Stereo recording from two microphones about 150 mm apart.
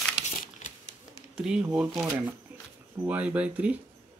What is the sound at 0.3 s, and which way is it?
Crumpling, 55° left (ahead or behind).